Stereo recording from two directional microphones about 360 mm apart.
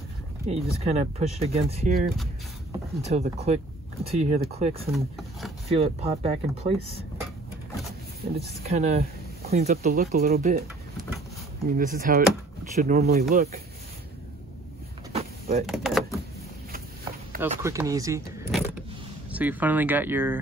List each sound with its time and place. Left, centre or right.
0.5 s speech: centre
3.0 s speech: centre
4.9 s speech: centre
5.7 s speech: centre
8.6 s speech: centre
15.1 s vehicle: centre
15.6 s speech: centre
17.4 s speech: centre